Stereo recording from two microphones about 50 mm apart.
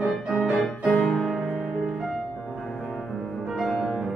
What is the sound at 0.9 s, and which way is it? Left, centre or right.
Music, centre.